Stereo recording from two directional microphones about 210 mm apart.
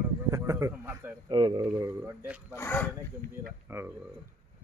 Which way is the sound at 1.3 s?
20° right (ahead or behind).